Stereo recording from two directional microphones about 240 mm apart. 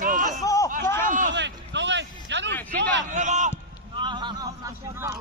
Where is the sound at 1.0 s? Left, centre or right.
Right.